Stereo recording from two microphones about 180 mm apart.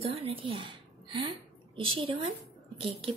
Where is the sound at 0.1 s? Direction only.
30° right (ahead or behind).